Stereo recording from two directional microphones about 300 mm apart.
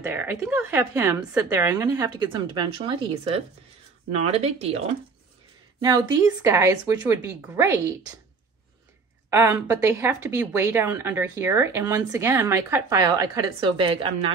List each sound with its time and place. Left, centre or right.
0.0 s speech: centre
9.3 s speech: centre